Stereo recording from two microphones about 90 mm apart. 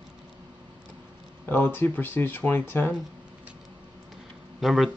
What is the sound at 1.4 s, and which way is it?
Speech, 20° left (ahead or behind).